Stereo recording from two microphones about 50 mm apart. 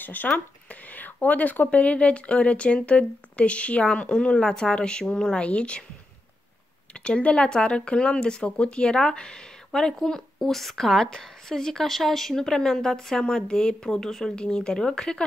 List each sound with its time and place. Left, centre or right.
0.0 s speech: left
6.9 s speech: left